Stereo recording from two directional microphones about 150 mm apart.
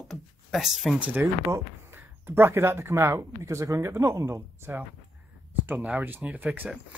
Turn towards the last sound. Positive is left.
turn(degrees=-10)  # may be behind; listen again after turning